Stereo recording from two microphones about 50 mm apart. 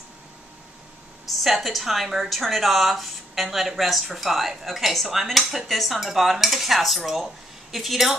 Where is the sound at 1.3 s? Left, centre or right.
Centre.